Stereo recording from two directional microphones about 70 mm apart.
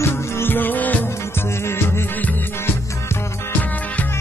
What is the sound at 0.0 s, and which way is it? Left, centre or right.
Music, left.